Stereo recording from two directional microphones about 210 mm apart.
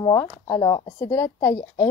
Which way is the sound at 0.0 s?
15° left (ahead or behind).